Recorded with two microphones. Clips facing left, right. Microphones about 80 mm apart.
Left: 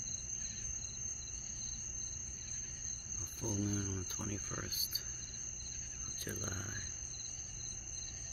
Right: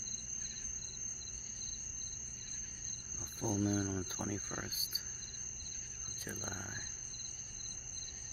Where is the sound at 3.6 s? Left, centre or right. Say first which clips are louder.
Right 5 dB; right.